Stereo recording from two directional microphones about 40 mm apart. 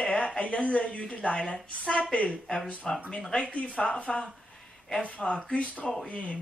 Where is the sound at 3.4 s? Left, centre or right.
Left.